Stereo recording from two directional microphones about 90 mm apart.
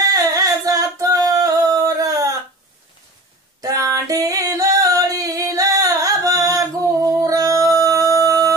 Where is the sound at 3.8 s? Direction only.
40° right (ahead or behind).